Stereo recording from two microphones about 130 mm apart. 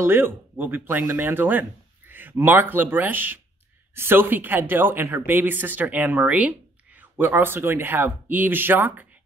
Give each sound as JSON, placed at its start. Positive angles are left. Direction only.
{"t": 0.0, "sound": "speech", "side_deg": -15}